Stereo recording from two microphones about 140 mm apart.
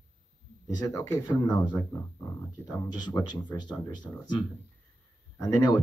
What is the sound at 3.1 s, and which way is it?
Speech, 30° left (ahead or behind).